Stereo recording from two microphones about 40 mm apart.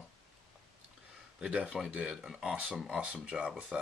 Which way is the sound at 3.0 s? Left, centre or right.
Right.